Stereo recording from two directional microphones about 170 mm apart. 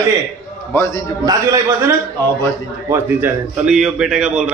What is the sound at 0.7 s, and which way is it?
Speech, 15° left (ahead or behind).